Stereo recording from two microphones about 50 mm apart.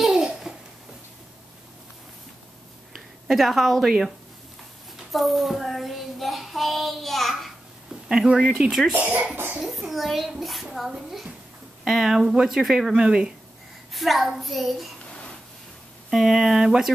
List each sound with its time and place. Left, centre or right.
0.0 s babbling: centre
2.9 s a sound: centre
4.9 s child singing: centre
7.9 s speech: centre
8.9 s speech: right
9.6 s child singing: centre
10.9 s speech: centre
12.6 s child singing: centre
12.9 s speech: centre
13.9 s child singing: centre
16.1 s speech: centre